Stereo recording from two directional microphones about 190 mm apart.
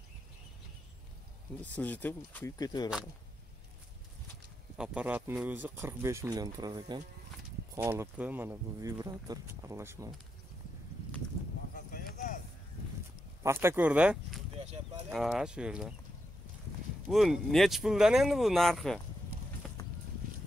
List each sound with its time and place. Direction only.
1.6 s speech: 10° left (ahead or behind)
4.7 s speech: 5° right (ahead or behind)
11.7 s a sound: 45° left (ahead or behind)
13.4 s speech: 15° right (ahead or behind)
17.1 s speech: centre (ahead or behind)
19.6 s vehicle: 5° left (ahead or behind)